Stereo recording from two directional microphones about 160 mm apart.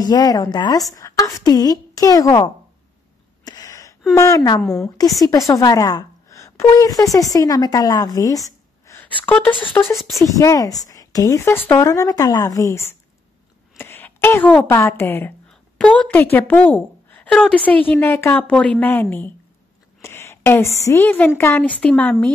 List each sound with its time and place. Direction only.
0.0 s speech: 25° left (ahead or behind)
3.4 s a sound: 25° left (ahead or behind)
4.1 s speech: 20° left (ahead or behind)
4.6 s a woman's voice: 5° left (ahead or behind)
5.5 s a woman's voice: 20° left (ahead or behind)
9.5 s speech: 30° left (ahead or behind)
9.9 s a woman's voice: centre (ahead or behind)
10.2 s a woman's voice: 20° left (ahead or behind)